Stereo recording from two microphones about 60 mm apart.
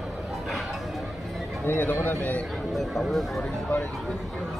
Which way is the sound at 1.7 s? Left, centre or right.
Left.